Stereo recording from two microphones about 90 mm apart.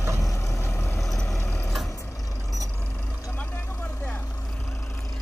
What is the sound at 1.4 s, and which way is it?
Vehicle, 20° left (ahead or behind).